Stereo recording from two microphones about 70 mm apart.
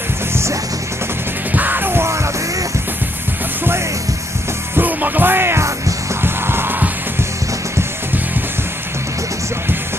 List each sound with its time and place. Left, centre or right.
1.5 s music: right
4.7 s music: right